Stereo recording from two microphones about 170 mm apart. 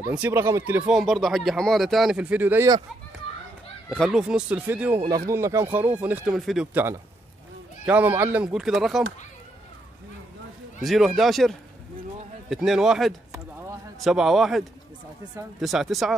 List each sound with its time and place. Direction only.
0.1 s speech: 15° right (ahead or behind)
0.9 s speech: centre (ahead or behind)
3.9 s speech: centre (ahead or behind)
10.8 s speech: centre (ahead or behind)